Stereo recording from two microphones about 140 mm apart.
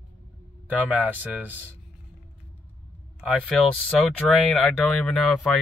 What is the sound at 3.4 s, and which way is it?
Speech, 10° left (ahead or behind).